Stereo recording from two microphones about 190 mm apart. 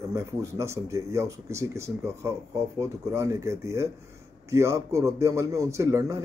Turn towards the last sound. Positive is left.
turn(degrees=-15)  # may be behind; listen again after turning